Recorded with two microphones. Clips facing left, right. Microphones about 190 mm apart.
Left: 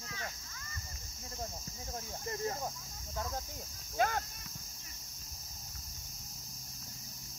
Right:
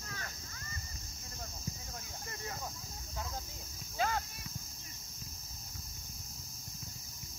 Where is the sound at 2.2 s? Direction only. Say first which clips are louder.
Left 7 dB; 35° left (ahead or behind).